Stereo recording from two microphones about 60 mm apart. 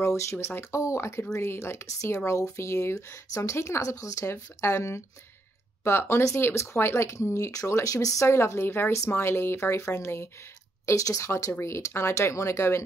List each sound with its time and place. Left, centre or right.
0.0 s speech: left
3.8 s speech: left
8.3 s speech: left
11.0 s speech: left